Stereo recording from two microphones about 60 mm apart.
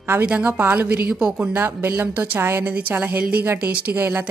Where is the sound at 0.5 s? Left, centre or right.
Right.